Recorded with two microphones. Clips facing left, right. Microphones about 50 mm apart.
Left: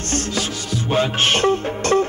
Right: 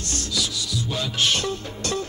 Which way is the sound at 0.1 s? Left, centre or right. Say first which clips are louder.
Left 5 dB; left.